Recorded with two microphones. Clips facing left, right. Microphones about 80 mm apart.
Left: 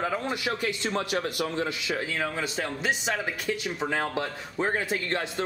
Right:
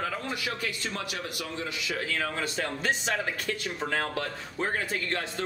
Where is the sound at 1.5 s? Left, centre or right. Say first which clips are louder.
Left 4 dB; left.